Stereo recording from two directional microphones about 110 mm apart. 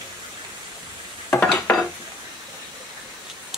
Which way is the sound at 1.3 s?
10° left (ahead or behind).